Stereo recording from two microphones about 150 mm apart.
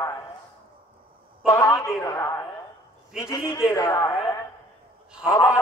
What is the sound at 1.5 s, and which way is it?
A man's voice, 20° left (ahead or behind).